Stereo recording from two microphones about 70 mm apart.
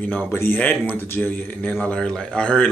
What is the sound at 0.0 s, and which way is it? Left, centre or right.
Speech, left.